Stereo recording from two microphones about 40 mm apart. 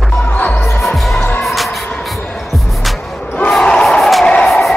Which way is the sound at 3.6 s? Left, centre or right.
Left.